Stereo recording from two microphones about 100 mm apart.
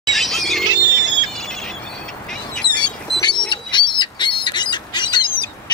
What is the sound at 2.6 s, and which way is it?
Duck, 50° left (ahead or behind).